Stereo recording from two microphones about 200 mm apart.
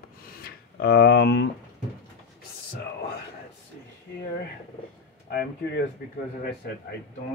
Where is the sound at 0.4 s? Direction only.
50° left (ahead or behind).